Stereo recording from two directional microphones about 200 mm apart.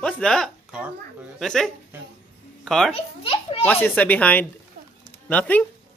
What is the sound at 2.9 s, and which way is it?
Speech, 25° left (ahead or behind).